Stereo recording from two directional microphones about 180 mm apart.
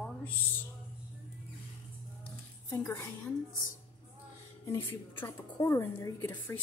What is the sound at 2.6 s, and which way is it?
Speech, 15° left (ahead or behind).